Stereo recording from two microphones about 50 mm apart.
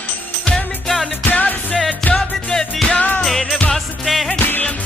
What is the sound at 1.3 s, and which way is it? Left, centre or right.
Music, left.